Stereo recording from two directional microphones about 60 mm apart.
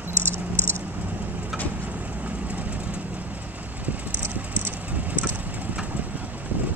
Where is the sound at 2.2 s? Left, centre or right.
Right.